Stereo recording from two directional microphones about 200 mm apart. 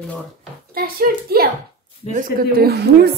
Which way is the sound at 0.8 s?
50° right (ahead or behind).